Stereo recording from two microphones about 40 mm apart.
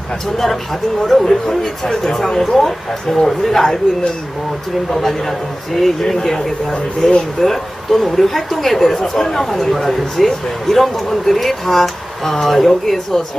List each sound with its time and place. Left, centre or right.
1.2 s speech: centre
4.9 s speech: centre
7.4 s speech: centre